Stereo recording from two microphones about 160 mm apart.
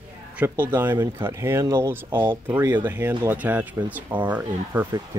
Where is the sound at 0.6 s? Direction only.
15° right (ahead or behind).